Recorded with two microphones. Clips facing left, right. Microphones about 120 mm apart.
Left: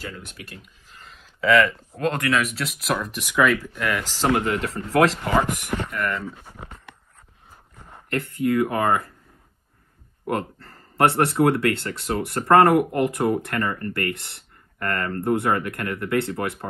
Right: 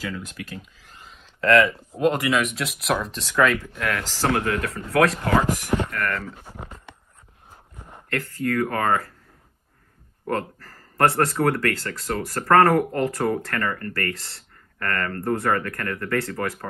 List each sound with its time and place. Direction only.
1.0 s speech: centre (ahead or behind)
3.1 s speech: 15° left (ahead or behind)
3.3 s speech: 5° left (ahead or behind)
4.0 s speech: 15° left (ahead or behind)
5.9 s speech: centre (ahead or behind)
7.7 s a sound: 5° right (ahead or behind)
8.1 s speech: 20° left (ahead or behind)
10.2 s speech: 20° left (ahead or behind)